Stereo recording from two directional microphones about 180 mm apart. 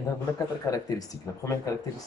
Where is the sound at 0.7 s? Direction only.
20° left (ahead or behind).